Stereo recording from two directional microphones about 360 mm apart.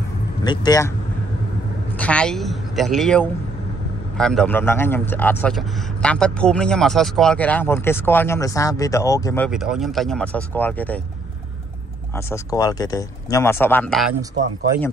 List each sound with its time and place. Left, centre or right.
0.4 s speech: centre
2.0 s a man's voice: centre
12.3 s speech: centre
14.3 s speech: right